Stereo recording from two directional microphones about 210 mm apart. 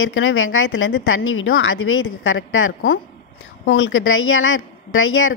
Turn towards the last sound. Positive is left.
turn(degrees=70)  # may be behind; listen again after turning